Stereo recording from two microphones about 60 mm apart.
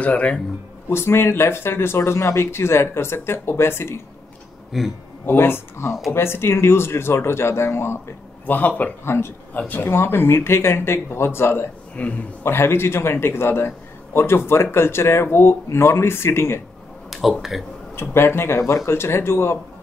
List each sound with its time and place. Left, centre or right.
0.0 s speech: left
0.8 s a man's voice: left
4.7 s speech: centre
5.2 s a man's voice: left
8.5 s speech: left
9.0 s a man's voice: left
9.5 s speech: left
9.8 s a man's voice: left
11.9 s a man's voice: left
12.4 s a man's voice: left
17.1 s speech: centre
18.1 s a man's voice: left